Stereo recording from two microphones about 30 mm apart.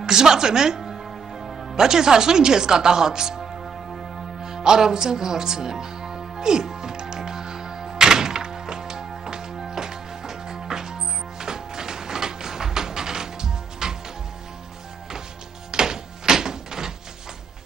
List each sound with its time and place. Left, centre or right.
0.0 s speech: right
1.4 s music: centre
1.8 s speech: right
4.4 s music: centre
15.7 s music: right